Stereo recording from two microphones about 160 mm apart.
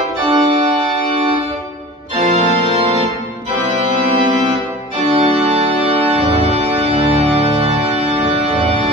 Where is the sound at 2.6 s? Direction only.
35° right (ahead or behind).